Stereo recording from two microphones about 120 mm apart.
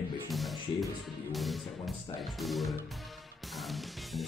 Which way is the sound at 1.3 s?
Centre (ahead or behind).